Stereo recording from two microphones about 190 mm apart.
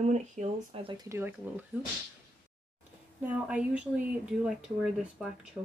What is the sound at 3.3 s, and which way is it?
Speech, 5° right (ahead or behind).